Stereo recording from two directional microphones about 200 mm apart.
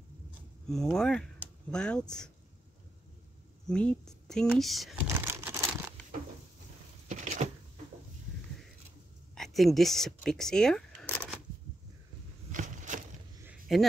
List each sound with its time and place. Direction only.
0.7 s speech: centre (ahead or behind)
3.6 s speech: 5° left (ahead or behind)
5.0 s crumpling: 10° right (ahead or behind)
7.1 s a sound: 35° right (ahead or behind)
9.3 s speech: centre (ahead or behind)
12.5 s a sound: 40° right (ahead or behind)
13.7 s speech: centre (ahead or behind)